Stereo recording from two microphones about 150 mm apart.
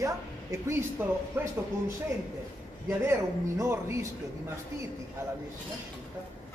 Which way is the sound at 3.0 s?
15° right (ahead or behind).